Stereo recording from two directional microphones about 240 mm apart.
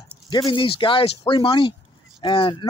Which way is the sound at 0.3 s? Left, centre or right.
Centre.